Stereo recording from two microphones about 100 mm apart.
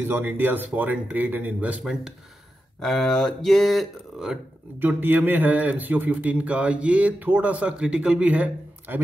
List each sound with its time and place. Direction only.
0.0 s speech: 20° right (ahead or behind); by 4.4 s 5° right (ahead or behind)
4.7 s speech: 20° right (ahead or behind)